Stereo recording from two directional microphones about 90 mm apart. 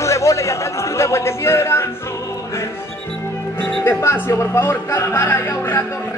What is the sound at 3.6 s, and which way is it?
Speech, 30° left (ahead or behind).